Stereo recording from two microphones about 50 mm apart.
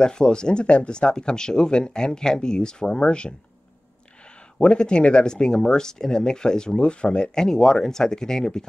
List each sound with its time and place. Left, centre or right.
0.0 s speech: centre
4.6 s speech: left